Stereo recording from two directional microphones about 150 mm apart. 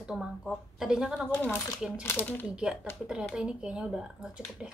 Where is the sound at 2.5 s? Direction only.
5° right (ahead or behind).